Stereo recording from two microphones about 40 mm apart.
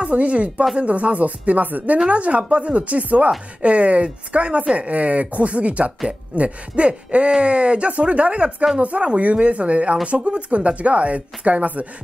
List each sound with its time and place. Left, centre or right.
0.0 s speech: right
2.0 s speech: right